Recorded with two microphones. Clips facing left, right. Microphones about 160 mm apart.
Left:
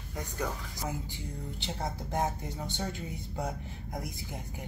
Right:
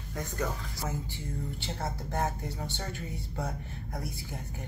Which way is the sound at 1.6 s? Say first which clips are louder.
Even; 15° left (ahead or behind).